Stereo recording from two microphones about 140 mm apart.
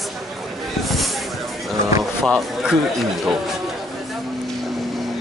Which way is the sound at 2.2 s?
Centre (ahead or behind).